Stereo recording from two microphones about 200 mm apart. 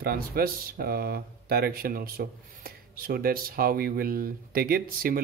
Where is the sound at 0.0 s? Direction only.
50° right (ahead or behind).